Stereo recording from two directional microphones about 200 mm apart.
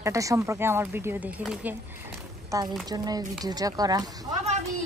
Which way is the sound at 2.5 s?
20° right (ahead or behind).